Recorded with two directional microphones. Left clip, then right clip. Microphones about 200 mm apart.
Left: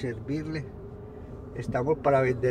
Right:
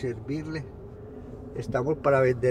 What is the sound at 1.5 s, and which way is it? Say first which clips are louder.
Speech: even; 25° right (ahead or behind).